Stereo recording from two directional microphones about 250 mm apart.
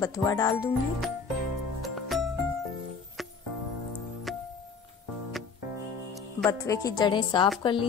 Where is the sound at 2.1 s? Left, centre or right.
Centre.